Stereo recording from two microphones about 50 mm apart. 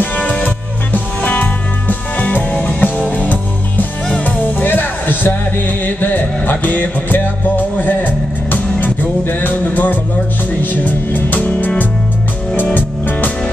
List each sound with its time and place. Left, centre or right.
0.0 s music: left
4.1 s music: left
4.4 s music: left